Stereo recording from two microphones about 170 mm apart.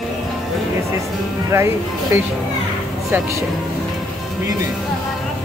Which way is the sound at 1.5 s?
15° right (ahead or behind).